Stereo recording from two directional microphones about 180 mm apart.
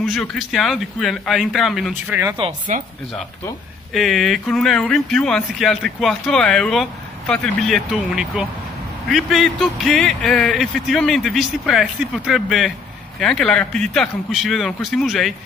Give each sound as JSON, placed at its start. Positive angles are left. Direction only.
{"t": 0.0, "sound": "speech", "side_deg": 5}
{"t": 2.0, "sound": "speech", "side_deg": -15}
{"t": 2.7, "sound": "speech", "side_deg": -45}
{"t": 3.9, "sound": "speech", "side_deg": 0}